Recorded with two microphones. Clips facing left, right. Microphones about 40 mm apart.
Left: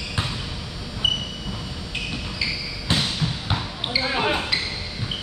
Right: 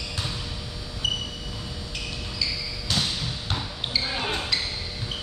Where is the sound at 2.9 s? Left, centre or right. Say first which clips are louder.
Left 4 dB; left.